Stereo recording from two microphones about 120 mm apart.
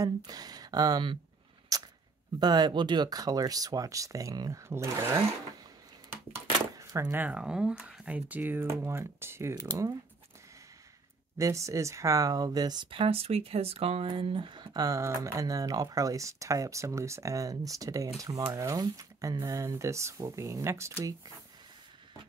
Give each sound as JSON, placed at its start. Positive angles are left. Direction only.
{"t": 0.0, "sound": "speech", "side_deg": -30}
{"t": 1.7, "sound": "a sound", "side_deg": -30}
{"t": 2.4, "sound": "speech", "side_deg": -35}
{"t": 6.3, "sound": "a sound", "side_deg": -25}
{"t": 7.1, "sound": "speech", "side_deg": -15}
{"t": 9.7, "sound": "speech", "side_deg": -30}
{"t": 11.3, "sound": "speech", "side_deg": -25}